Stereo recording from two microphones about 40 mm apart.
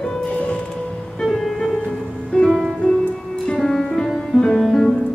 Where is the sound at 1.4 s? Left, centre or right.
Centre.